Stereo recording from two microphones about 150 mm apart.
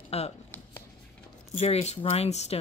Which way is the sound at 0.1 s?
45° left (ahead or behind).